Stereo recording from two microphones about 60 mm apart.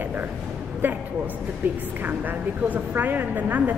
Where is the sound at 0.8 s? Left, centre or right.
Right.